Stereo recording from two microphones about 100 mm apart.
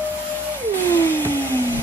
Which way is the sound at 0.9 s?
20° left (ahead or behind).